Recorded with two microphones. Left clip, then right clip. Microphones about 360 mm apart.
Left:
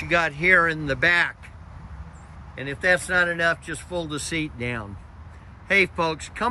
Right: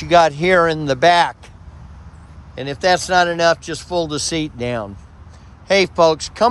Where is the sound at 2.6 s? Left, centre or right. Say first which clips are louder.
Right 5 dB; centre.